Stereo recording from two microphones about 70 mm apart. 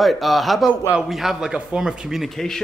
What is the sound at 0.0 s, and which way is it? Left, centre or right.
Speech, centre.